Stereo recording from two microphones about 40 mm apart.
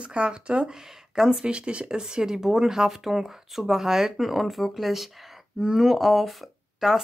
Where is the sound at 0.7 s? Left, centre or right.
Centre.